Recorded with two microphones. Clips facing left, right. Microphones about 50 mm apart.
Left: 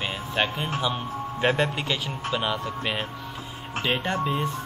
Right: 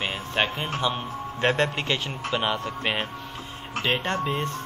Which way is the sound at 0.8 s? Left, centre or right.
Centre.